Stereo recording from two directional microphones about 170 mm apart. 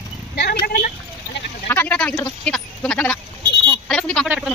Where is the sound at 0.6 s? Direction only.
55° left (ahead or behind).